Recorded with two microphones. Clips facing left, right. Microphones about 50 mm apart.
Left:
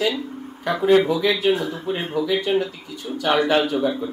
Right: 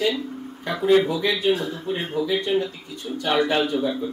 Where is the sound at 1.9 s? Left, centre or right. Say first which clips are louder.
Left 1 dB; left.